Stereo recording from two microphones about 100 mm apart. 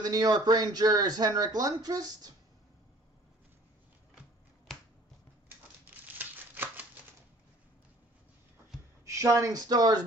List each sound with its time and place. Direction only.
0.0 s speech: 45° right (ahead or behind)
6.1 s a sound: 20° right (ahead or behind)
9.0 s speech: 30° right (ahead or behind)